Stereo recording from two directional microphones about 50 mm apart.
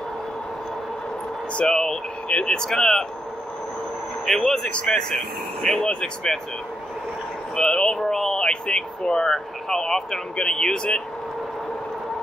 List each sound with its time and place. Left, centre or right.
1.5 s speech: centre
4.3 s speech: centre
4.6 s speech: centre
7.5 s speech: centre